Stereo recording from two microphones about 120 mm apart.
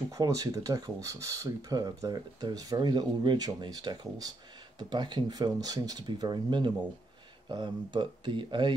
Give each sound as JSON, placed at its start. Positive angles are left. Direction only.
{"t": 0.1, "sound": "speech", "side_deg": -30}